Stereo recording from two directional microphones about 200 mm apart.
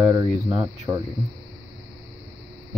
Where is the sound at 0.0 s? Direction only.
25° right (ahead or behind).